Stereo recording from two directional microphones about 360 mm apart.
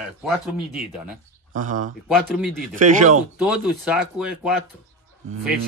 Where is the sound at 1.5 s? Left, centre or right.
Right.